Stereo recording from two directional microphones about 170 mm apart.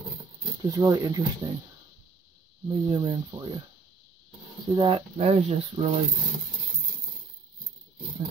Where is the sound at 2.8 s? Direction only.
25° right (ahead or behind).